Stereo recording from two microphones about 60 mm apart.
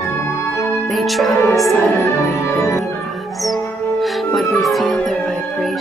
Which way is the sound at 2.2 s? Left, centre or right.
Left.